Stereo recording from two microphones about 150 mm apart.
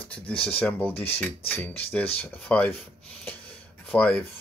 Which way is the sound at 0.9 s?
40° left (ahead or behind).